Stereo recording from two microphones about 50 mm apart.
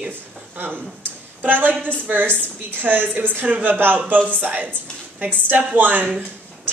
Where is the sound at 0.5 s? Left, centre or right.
Right.